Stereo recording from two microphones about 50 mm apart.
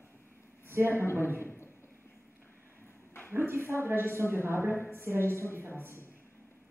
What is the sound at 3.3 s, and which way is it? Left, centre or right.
A woman's voice, right.